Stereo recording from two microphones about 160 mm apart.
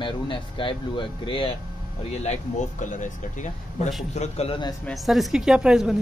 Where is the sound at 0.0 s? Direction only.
30° left (ahead or behind).